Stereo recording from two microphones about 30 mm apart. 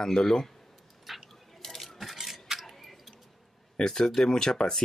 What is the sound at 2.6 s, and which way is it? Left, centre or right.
Tick-tock, centre.